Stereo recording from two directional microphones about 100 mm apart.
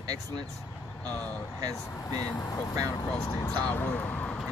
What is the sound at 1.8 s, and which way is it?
Speech, 30° left (ahead or behind).